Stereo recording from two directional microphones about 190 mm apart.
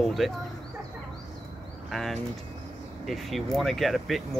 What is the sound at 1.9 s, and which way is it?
Speech, centre (ahead or behind).